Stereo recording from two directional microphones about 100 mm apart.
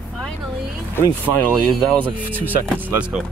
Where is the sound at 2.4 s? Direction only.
20° right (ahead or behind).